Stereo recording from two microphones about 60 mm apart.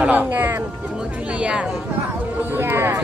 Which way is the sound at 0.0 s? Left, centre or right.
Right.